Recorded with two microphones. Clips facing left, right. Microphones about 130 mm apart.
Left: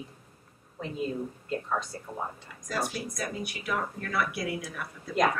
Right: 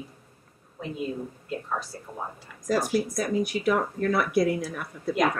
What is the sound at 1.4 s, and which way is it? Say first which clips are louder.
Speech: even; 5° right (ahead or behind).